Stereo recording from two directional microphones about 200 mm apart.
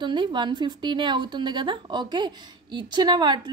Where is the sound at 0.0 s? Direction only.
25° right (ahead or behind).